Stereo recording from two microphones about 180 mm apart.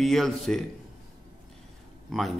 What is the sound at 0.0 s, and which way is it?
Speech, centre (ahead or behind).